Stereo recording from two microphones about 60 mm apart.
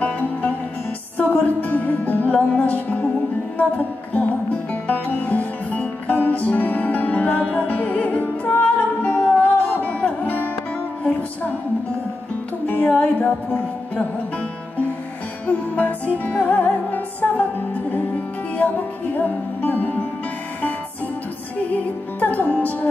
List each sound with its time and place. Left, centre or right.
0.0 s music: left
12.6 s music: left
15.4 s music: left
22.2 s music: left